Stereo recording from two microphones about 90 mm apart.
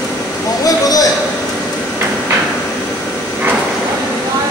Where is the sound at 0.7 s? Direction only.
45° left (ahead or behind).